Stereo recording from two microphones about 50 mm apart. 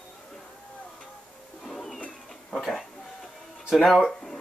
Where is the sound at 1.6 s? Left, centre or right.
Centre.